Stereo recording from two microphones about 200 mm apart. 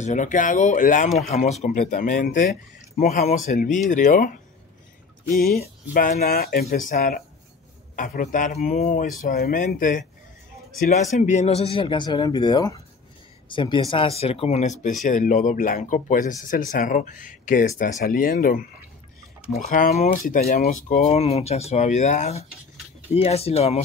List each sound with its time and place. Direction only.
0.0 s speech: 40° left (ahead or behind)
5.3 s a sound: 50° left (ahead or behind)
7.9 s speech: 40° left (ahead or behind)
11.1 s speech: 35° left (ahead or behind)
19.7 s speech: 40° left (ahead or behind)